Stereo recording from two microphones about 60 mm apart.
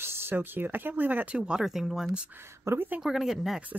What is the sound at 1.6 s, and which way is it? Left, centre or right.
Speech, centre.